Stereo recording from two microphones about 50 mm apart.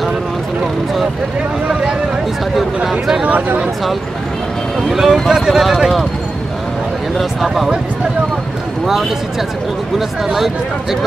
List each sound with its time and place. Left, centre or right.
2.5 s speech: centre
3.3 s speech: right
4.8 s speech: centre
7.4 s speech: centre
9.9 s speech: centre